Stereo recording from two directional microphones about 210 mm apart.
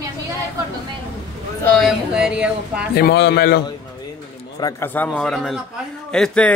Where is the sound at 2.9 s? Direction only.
50° left (ahead or behind).